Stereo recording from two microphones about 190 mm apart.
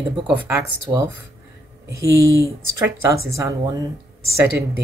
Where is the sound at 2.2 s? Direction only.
80° right.